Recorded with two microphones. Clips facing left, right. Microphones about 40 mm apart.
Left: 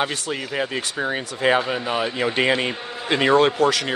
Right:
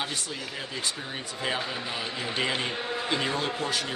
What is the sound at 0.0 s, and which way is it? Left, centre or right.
Speech, left.